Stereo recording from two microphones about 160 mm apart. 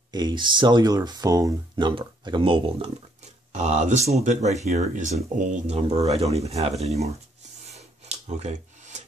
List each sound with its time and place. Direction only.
0.1 s speech: 25° right (ahead or behind)
3.5 s speech: 45° right (ahead or behind)
7.7 s a sound: 45° right (ahead or behind)